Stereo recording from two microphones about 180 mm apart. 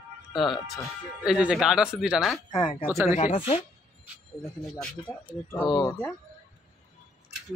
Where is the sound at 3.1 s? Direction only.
50° left (ahead or behind).